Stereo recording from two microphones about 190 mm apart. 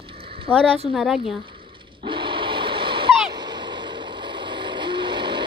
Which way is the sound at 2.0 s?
25° right (ahead or behind).